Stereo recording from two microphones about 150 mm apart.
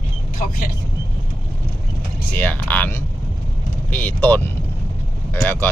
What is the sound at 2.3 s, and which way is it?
Speech, 10° left (ahead or behind).